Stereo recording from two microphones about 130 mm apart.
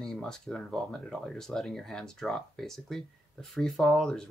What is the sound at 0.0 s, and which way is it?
Speech, 5° left (ahead or behind).